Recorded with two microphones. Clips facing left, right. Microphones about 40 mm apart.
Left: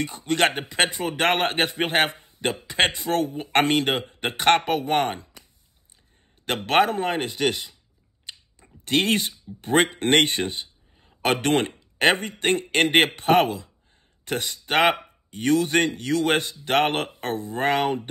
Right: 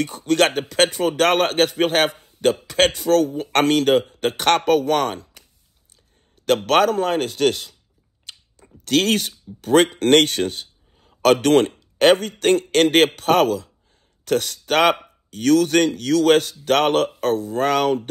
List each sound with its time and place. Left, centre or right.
0.0 s a man's voice: left
6.4 s a man's voice: left
8.8 s a man's voice: left